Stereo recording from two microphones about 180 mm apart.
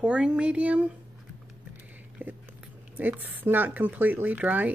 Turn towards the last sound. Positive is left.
turn(degrees=-10)  # may be behind; listen again after turning